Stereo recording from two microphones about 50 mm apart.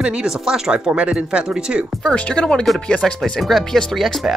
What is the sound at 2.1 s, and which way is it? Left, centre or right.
Speech, left.